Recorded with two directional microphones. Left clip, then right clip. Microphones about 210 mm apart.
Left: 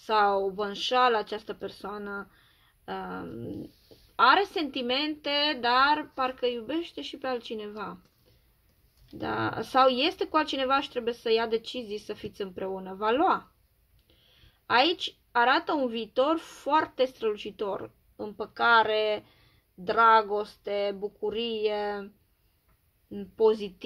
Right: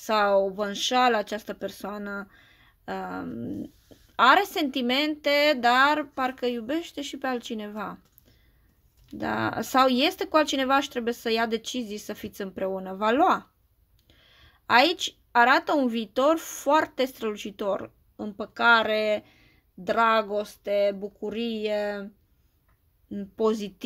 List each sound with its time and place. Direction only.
0.0 s a woman's voice: 45° right (ahead or behind)
9.2 s a woman's voice: 45° right (ahead or behind)
19.8 s a sound: 40° right (ahead or behind)
23.1 s a woman's voice: 40° right (ahead or behind)